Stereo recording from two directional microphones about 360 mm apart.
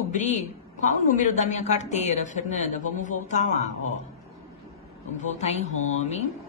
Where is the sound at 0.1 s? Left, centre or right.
Centre.